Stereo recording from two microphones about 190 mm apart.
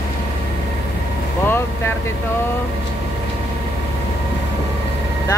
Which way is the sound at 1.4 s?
10° left (ahead or behind).